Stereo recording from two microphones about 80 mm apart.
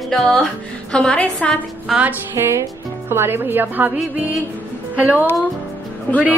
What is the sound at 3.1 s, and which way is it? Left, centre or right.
Speech, right.